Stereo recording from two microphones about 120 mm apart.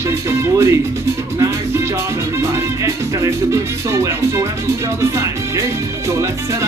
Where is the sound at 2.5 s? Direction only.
25° right (ahead or behind).